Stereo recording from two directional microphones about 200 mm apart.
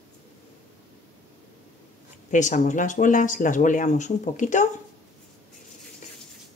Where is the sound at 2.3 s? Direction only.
40° left (ahead or behind).